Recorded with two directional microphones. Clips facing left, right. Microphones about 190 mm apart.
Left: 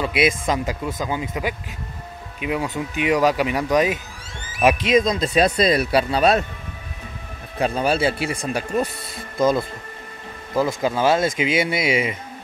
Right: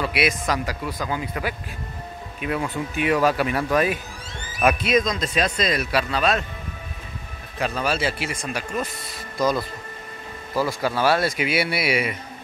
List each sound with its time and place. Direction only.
0.0 s speech: 25° left (ahead or behind)
4.9 s speech: 30° left (ahead or behind)
7.5 s speech: 30° left (ahead or behind)